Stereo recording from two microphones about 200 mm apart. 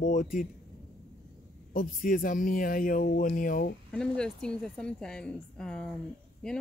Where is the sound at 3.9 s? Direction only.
5° left (ahead or behind).